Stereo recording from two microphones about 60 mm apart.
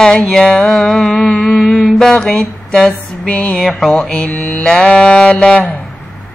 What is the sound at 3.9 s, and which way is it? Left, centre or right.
Music, centre.